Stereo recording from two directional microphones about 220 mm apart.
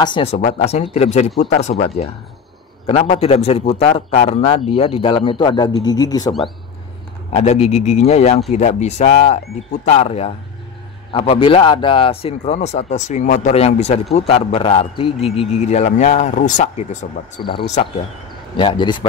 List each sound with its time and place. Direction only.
0.0 s a man's voice: 25° left (ahead or behind)
2.9 s a man's voice: 25° left (ahead or behind)
7.3 s a man's voice: 30° left (ahead or behind)
17.4 s a man's voice: 20° left (ahead or behind)